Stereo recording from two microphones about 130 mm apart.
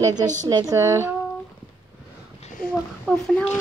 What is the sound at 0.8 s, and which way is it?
Speech, 20° right (ahead or behind).